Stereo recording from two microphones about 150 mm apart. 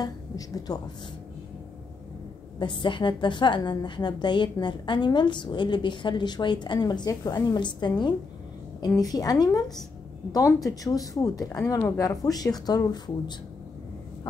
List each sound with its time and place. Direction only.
0.7 s speech: 25° left (ahead or behind)
2.6 s a woman's voice: 30° left (ahead or behind)